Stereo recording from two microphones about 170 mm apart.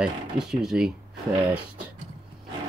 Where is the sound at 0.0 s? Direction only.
5° right (ahead or behind).